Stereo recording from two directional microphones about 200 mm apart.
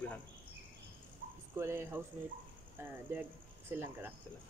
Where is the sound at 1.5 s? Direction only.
10° right (ahead or behind).